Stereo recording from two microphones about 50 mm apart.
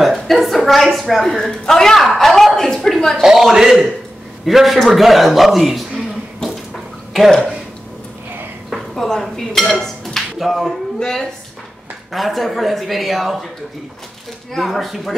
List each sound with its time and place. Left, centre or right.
0.0 s a woman's voice: centre
3.2 s a man's voice: centre
6.4 s bathtub: centre
8.9 s speech: centre
11.0 s speech: centre
12.1 s speech: centre
14.5 s speech: centre